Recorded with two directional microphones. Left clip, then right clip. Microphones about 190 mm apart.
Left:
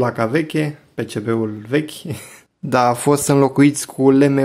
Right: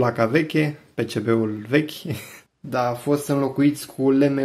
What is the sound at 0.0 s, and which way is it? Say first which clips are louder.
Speech: left 1 dB; 15° left (ahead or behind).